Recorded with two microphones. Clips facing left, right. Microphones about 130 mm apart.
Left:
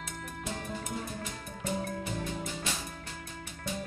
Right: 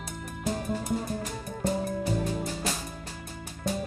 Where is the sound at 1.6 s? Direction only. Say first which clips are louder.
Right 6 dB; 40° right (ahead or behind).